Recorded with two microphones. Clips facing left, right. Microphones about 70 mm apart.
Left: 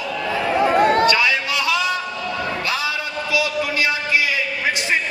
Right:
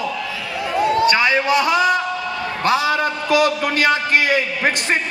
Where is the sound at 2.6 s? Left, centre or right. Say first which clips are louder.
Right 7 dB; right.